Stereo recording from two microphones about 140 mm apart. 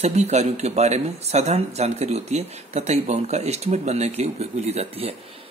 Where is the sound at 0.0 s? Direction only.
50° right (ahead or behind).